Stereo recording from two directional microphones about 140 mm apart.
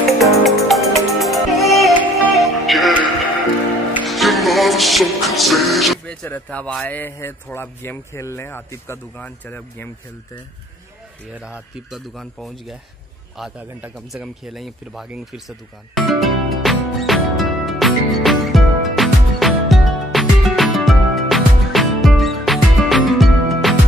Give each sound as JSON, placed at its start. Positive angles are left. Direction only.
{"t": 0.2, "sound": "music", "side_deg": 0}
{"t": 4.1, "sound": "music", "side_deg": 0}
{"t": 6.2, "sound": "speech", "side_deg": 10}
{"t": 6.9, "sound": "speech", "side_deg": 15}
{"t": 11.4, "sound": "a man's voice", "side_deg": -5}
{"t": 13.4, "sound": "a sound", "side_deg": -5}